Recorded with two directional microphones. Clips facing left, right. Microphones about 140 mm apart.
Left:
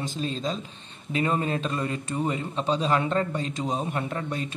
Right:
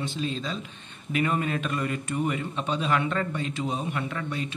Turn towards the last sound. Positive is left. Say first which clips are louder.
# left 1 dB
turn(degrees=40)  # may be behind; listen again after turning